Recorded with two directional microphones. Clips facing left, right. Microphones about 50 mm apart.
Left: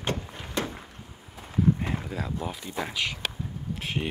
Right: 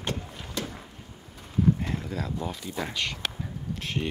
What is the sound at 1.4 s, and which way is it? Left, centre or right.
Horse, centre.